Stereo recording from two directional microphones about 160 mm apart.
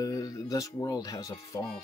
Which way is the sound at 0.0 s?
20° left (ahead or behind).